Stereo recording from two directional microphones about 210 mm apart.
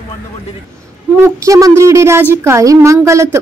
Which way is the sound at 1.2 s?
15° right (ahead or behind).